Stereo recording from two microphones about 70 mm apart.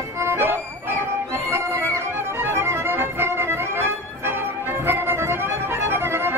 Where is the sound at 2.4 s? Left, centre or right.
Right.